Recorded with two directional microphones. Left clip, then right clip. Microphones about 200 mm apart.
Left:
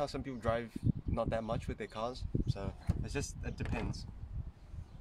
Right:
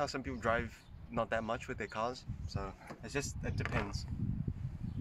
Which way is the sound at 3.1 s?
15° right (ahead or behind).